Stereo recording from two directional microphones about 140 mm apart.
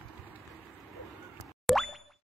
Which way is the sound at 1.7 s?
Centre (ahead or behind).